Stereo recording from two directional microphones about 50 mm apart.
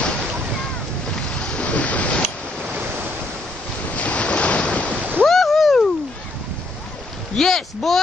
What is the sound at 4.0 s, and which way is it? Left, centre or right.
Waves, left.